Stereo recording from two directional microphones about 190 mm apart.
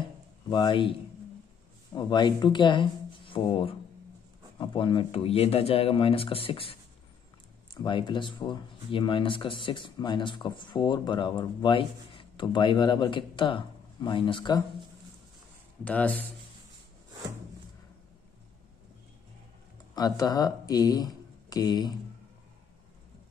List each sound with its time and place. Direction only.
0.5 s speech: 25° left (ahead or behind)
2.0 s speech: 25° left (ahead or behind)
15.8 s speech: 10° left (ahead or behind)
20.0 s speech: 20° left (ahead or behind)